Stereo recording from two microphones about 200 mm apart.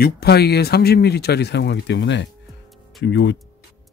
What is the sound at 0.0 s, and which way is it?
Speech, 55° left (ahead or behind).